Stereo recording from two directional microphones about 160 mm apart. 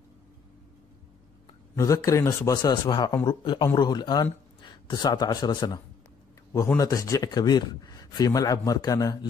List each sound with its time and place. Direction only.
1.8 s speech: 20° left (ahead or behind)
6.8 s speech: 20° left (ahead or behind)